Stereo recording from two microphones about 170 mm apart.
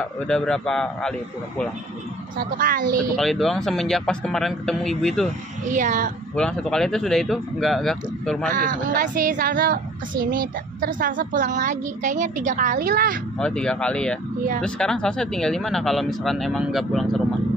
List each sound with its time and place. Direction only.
0.0 s speech: 5° left (ahead or behind)
2.3 s speech: 55° right (ahead or behind)
3.2 s speech: centre (ahead or behind)
5.7 s speech: 50° right (ahead or behind)
6.3 s speech: 5° left (ahead or behind)
8.5 s speech: 50° right (ahead or behind)
13.4 s speech: 5° left (ahead or behind)